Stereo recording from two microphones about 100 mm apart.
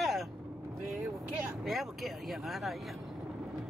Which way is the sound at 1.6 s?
Centre (ahead or behind).